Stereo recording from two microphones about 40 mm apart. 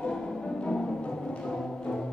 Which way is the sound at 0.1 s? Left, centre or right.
Centre.